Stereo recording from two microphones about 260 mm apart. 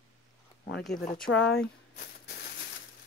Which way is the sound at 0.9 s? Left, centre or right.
Left.